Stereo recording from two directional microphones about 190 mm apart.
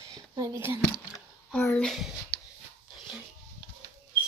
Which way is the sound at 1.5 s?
10° left (ahead or behind).